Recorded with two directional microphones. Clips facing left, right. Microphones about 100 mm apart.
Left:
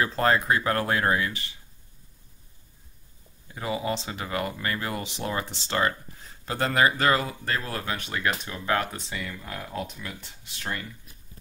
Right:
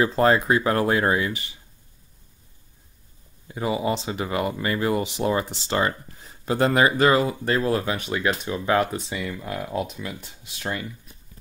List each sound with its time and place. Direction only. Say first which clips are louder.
0.0 s speech: right 4 dB; 15° right (ahead or behind)
3.5 s speech: right 5 dB; 15° right (ahead or behind)